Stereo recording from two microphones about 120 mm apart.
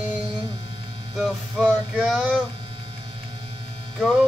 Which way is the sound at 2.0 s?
Centre (ahead or behind).